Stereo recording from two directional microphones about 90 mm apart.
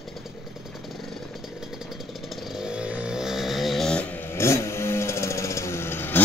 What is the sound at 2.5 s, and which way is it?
Vehicle, 10° right (ahead or behind).